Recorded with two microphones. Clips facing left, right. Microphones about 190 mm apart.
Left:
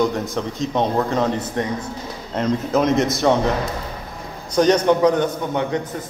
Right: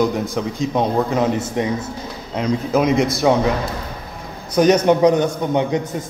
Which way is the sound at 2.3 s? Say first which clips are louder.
Right 1 dB; centre (ahead or behind).